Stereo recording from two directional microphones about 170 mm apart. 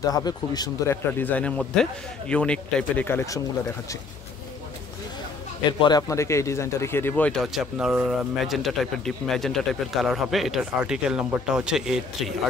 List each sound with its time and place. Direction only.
0.0 s a man's voice: 25° left (ahead or behind)
1.1 s a man's voice: 10° left (ahead or behind)
5.7 s a man's voice: 25° left (ahead or behind); by 12.3 s 5° right (ahead or behind)